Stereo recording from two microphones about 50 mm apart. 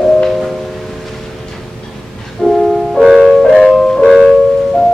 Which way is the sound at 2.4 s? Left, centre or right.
Centre.